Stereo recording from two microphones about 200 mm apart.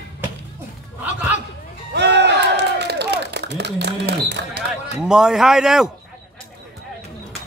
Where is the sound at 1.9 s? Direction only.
55° right (ahead or behind).